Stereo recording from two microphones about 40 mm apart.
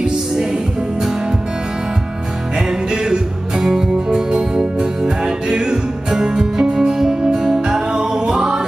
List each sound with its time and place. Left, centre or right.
2.9 s music: centre